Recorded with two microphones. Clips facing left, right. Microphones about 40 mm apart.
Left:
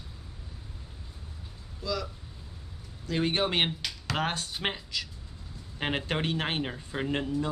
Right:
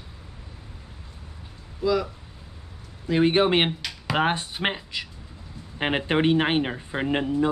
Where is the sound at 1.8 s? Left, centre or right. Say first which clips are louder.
Right 10 dB; centre.